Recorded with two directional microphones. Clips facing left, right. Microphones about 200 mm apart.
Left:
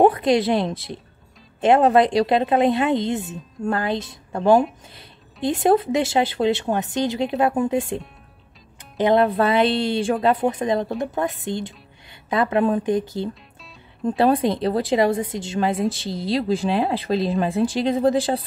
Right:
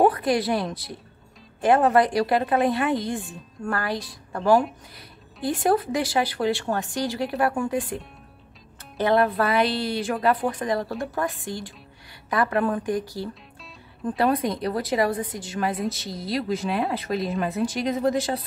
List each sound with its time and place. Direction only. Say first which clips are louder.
0.0 s a woman's voice: left 4 dB; 25° left (ahead or behind)